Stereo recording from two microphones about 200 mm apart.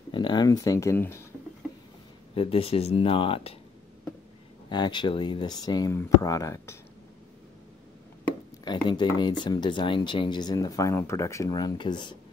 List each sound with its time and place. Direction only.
0.1 s speech: 25° left (ahead or behind)
2.3 s speech: 30° left (ahead or behind)
4.6 s speech: 20° left (ahead or behind)
8.6 s speech: 20° left (ahead or behind)